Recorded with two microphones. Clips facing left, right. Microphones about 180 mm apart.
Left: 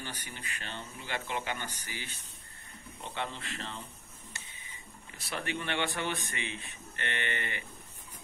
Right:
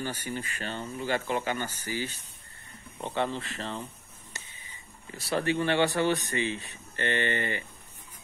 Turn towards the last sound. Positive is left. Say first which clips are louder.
# right 8 dB
turn(degrees=-35)  # may be behind; listen again after turning